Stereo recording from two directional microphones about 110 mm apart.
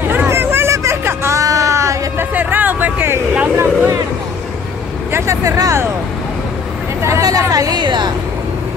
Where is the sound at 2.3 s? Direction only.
15° right (ahead or behind).